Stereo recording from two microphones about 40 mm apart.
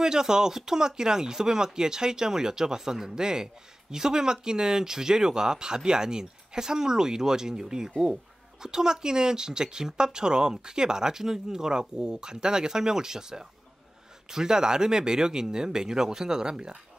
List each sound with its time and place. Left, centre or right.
0.0 s speech: centre